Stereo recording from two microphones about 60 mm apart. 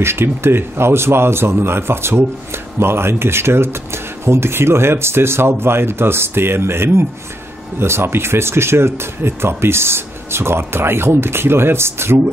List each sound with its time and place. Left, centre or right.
0.0 s a man's voice: right